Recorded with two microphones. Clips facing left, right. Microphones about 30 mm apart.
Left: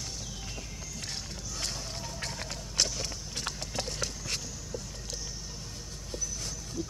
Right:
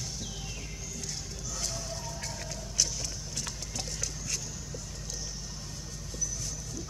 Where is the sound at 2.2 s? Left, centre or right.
Left.